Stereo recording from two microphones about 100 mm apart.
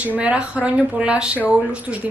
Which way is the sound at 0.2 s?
15° right (ahead or behind).